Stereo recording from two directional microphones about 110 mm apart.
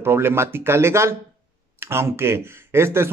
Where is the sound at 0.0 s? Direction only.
20° right (ahead or behind).